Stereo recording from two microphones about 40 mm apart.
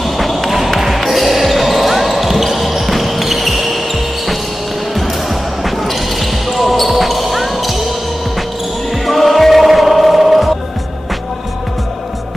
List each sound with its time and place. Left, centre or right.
0.0 s basketball bounce: centre
6.5 s basketball bounce: centre
9.0 s music: centre